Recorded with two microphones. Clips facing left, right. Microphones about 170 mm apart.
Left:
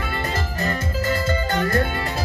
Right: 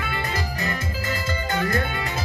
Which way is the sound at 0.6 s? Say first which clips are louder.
Left 4 dB; 45° left (ahead or behind).